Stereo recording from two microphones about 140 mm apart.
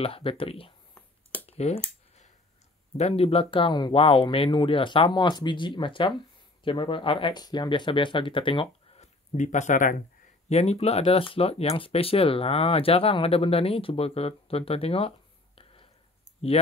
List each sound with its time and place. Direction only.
0.0 s speech: 40° left (ahead or behind)
1.4 s a sound: 45° left (ahead or behind)
3.0 s speech: 50° left (ahead or behind); by 10.0 s 65° left (ahead or behind)
10.5 s speech: 50° left (ahead or behind)